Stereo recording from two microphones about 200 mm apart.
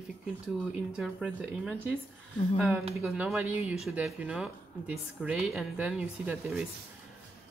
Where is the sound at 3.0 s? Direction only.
5° right (ahead or behind).